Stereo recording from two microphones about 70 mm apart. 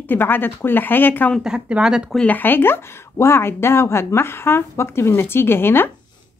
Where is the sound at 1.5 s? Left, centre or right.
Centre.